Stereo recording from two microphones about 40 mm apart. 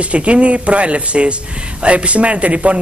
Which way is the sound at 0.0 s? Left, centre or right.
Right.